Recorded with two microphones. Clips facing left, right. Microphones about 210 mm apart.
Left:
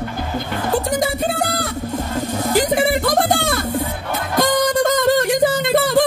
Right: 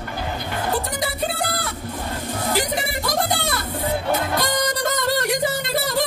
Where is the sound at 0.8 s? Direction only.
45° left (ahead or behind).